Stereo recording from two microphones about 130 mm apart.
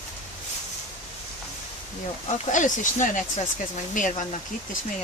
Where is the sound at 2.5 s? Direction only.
80° left.